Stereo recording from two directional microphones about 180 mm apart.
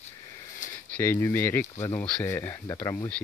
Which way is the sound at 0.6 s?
45° left (ahead or behind).